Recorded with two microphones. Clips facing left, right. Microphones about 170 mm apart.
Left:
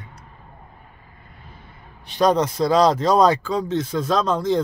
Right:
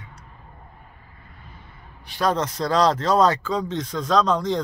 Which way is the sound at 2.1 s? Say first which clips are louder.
Left 5 dB; 20° left (ahead or behind).